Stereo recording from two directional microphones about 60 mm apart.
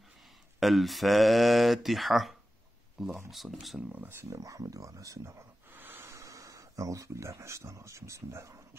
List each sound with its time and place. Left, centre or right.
0.6 s speech: centre
4.1 s speech: right
4.4 s speech: right
5.7 s speech: right